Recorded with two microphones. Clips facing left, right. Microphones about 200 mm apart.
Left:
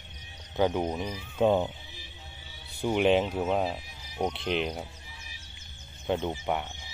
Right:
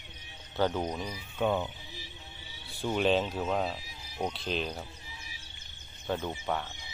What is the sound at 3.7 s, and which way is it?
Cricket, 20° left (ahead or behind).